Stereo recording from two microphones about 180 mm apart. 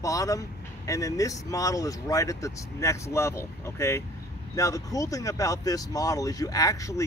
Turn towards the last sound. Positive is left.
turn(degrees=20)  # may be behind; listen again after turning